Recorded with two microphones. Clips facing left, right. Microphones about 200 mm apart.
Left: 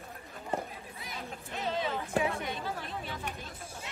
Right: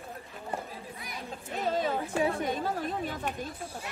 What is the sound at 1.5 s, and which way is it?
Speech, 45° right (ahead or behind).